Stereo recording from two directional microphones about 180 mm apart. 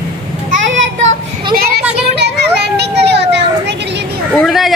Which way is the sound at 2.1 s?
65° right (ahead or behind).